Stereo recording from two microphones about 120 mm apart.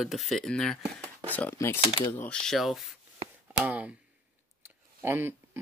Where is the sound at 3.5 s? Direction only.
10° right (ahead or behind).